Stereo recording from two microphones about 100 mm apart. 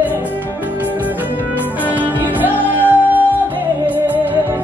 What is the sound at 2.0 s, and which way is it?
Music, 20° right (ahead or behind).